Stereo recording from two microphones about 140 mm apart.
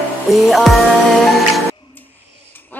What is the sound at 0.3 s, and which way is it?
Music, centre (ahead or behind).